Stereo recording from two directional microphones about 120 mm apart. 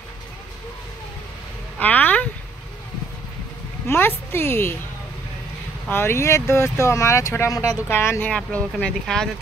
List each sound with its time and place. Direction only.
1.8 s a sound: 15° left (ahead or behind)
3.8 s a woman's voice: 20° left (ahead or behind)
5.9 s speech: 20° left (ahead or behind); by 9.3 s 5° left (ahead or behind)